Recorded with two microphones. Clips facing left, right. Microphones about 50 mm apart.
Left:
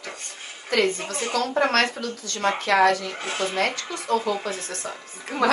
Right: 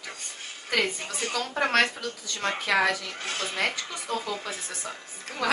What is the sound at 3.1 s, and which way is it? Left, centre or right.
Speech, centre.